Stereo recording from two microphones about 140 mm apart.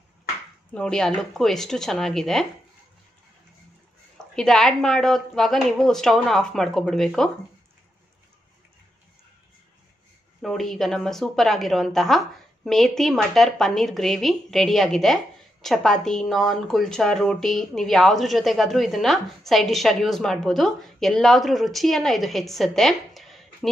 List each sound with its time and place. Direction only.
0.7 s a woman's voice: 5° left (ahead or behind)
4.4 s a woman's voice: centre (ahead or behind)
10.4 s a woman's voice: centre (ahead or behind)